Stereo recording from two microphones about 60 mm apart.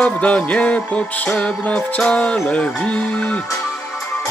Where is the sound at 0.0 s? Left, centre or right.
Left.